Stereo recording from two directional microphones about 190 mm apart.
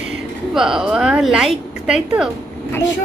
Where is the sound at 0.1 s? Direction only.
5° right (ahead or behind).